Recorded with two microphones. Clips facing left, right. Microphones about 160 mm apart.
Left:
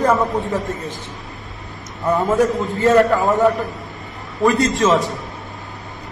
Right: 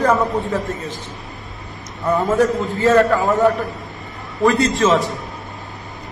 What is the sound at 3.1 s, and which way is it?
Speech, centre (ahead or behind).